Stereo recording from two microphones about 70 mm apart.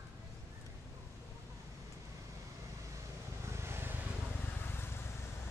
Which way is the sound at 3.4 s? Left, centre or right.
Right.